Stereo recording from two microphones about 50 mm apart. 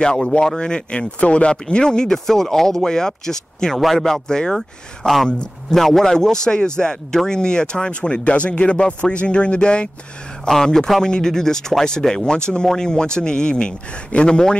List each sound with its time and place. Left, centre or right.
0.0 s a man's voice: centre
10.5 s speech: centre